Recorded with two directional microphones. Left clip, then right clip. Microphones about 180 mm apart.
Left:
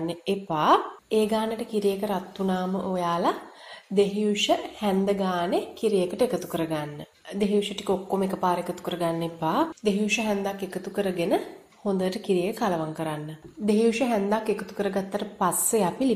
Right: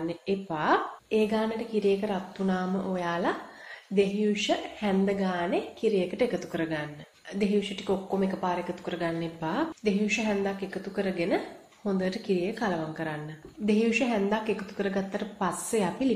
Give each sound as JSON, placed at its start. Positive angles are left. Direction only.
{"t": 0.0, "sound": "a woman's voice", "side_deg": 35}